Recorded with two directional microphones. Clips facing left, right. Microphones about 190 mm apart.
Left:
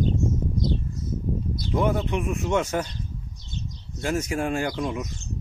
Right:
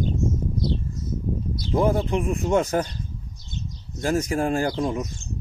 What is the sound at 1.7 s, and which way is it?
Speech, 35° right (ahead or behind).